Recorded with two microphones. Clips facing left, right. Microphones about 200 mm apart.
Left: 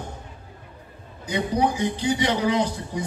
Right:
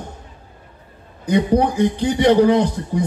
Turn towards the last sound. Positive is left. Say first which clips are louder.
# right 6 dB
turn(degrees=-55)  # may be behind; listen again after turning